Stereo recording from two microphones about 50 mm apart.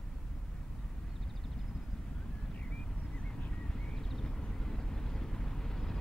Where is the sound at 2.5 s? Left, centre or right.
Left.